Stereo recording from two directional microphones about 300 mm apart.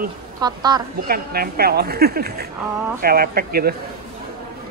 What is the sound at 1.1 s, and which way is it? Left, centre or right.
A woman's voice, right.